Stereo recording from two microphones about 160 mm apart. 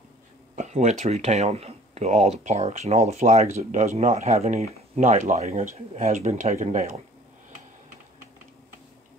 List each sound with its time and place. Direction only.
0.6 s speech: 45° right (ahead or behind)